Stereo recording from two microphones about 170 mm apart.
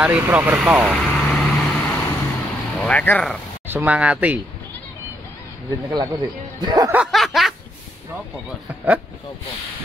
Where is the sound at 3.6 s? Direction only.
10° right (ahead or behind).